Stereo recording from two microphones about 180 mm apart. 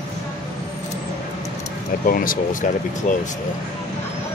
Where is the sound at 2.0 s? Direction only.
50° left (ahead or behind).